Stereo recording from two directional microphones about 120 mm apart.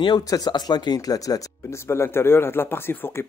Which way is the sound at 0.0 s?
35° left (ahead or behind).